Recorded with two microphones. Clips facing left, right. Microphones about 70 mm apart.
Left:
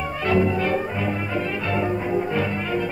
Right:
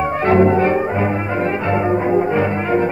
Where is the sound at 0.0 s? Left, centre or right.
Right.